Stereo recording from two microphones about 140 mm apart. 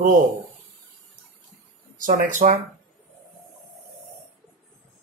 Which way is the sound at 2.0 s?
65° right (ahead or behind).